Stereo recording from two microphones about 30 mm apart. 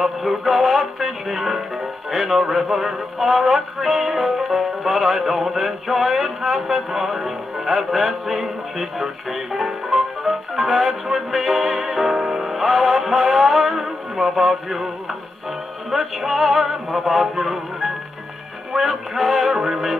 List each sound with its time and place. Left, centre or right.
0.0 s music: centre
15.9 s music: centre